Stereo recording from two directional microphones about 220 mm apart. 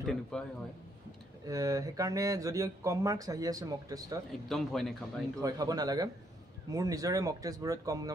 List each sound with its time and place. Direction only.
0.0 s a man's voice: centre (ahead or behind)
1.4 s speech: 15° right (ahead or behind)
4.5 s a man's voice: centre (ahead or behind)
5.4 s speech: 15° right (ahead or behind)